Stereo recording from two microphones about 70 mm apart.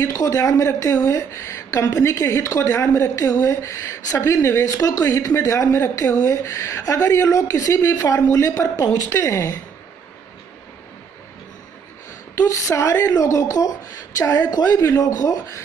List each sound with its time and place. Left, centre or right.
0.0 s a woman's voice: left
9.2 s speech: left
12.4 s a woman's voice: left
15.0 s a woman's voice: left